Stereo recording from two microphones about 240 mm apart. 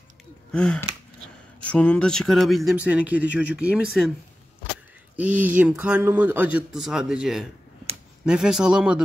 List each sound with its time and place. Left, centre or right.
0.5 s gasp: centre
1.7 s speech: centre
5.1 s speech: centre